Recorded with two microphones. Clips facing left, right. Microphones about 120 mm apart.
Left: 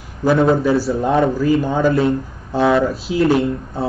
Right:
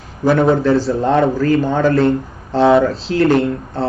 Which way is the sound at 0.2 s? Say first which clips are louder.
Right 1 dB; centre (ahead or behind).